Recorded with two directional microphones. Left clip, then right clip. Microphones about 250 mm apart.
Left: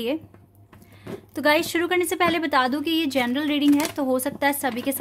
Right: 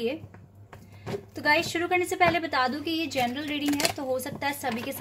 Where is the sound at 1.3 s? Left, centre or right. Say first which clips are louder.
Left 4 dB; left.